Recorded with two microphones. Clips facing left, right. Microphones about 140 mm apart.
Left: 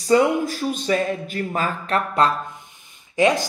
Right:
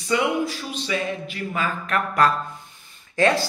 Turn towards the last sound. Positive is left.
turn(degrees=15)  # may be behind; listen again after turning